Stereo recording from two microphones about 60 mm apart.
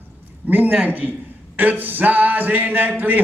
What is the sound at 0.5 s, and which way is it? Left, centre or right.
A man's voice, right.